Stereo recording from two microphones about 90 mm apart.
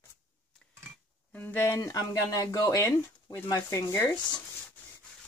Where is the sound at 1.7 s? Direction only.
40° left (ahead or behind).